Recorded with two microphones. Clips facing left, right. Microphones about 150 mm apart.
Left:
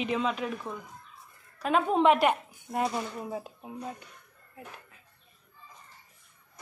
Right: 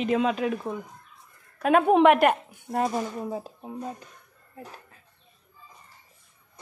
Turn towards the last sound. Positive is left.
turn(degrees=-35)  # may be behind; listen again after turning